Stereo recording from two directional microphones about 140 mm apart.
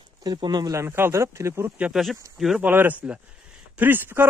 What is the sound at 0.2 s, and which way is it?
Speech, 30° right (ahead or behind).